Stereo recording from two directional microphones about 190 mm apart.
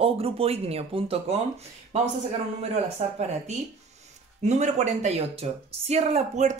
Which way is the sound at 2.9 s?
35° right (ahead or behind).